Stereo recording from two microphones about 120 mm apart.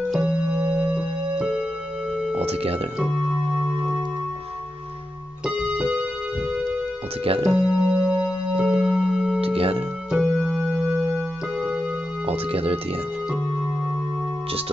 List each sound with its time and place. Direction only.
0.1 s keyboard: 10° right (ahead or behind)
1.3 s music: 10° right (ahead or behind)
2.3 s speech: 55° right (ahead or behind)
3.0 s keyboard: 10° right (ahead or behind)
5.4 s keyboard: 10° right (ahead or behind)
9.4 s music: 50° right (ahead or behind)
10.1 s music: 5° right (ahead or behind)
12.3 s speech: 50° right (ahead or behind)